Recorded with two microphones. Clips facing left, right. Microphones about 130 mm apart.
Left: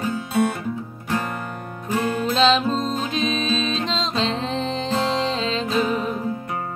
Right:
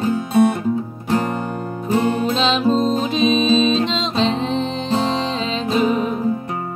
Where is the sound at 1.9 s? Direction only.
25° right (ahead or behind).